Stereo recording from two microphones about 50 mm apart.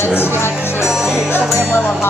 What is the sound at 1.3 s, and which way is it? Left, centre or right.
Music, left.